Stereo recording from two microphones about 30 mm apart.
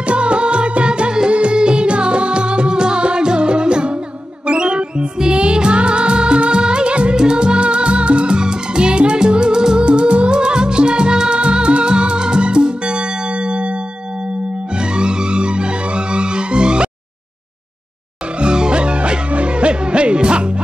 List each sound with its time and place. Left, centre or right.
0.0 s music: right
8.4 s music: right
9.8 s music: right
14.8 s music: right
18.4 s music: right